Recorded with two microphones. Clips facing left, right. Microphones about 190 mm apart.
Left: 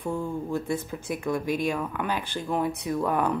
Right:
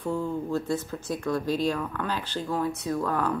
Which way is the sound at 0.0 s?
15° left (ahead or behind).